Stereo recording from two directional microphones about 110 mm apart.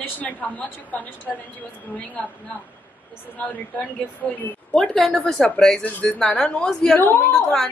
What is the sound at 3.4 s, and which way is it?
A woman's voice, 15° left (ahead or behind).